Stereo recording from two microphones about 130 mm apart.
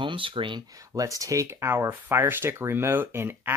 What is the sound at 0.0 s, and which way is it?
Speech, 40° right (ahead or behind).